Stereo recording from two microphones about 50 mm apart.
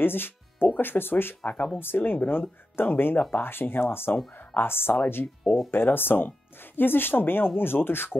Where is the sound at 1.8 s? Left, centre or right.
Left.